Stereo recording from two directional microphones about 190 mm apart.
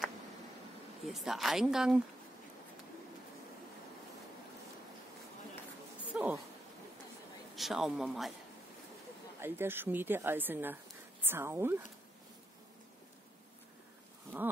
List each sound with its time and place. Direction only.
1.0 s speech: centre (ahead or behind)
6.1 s dog: 5° right (ahead or behind)
7.5 s speech: centre (ahead or behind)
9.4 s a woman's voice: 10° right (ahead or behind)